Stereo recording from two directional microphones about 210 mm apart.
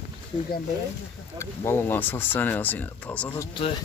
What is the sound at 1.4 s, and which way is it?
Speech, 10° left (ahead or behind).